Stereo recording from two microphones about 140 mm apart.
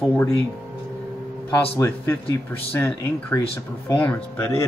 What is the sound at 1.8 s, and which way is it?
A man's voice, 15° left (ahead or behind).